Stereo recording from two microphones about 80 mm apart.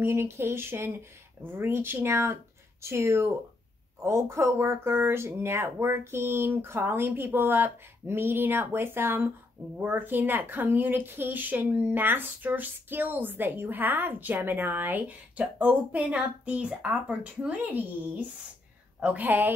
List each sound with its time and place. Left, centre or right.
0.0 s speech: right